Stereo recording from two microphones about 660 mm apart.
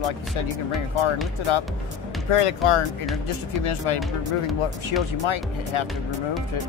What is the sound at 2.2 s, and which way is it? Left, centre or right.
Speech, left.